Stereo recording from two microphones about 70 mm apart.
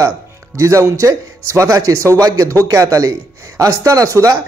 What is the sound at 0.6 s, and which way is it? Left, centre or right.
A man's voice, right.